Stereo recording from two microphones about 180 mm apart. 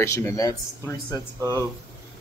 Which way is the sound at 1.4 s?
20° right (ahead or behind).